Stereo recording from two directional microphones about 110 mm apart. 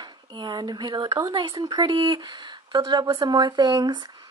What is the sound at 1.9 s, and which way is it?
Speech, 50° right (ahead or behind).